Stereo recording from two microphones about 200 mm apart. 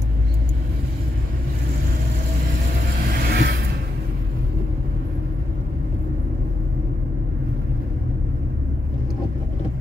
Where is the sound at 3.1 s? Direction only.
50° right (ahead or behind).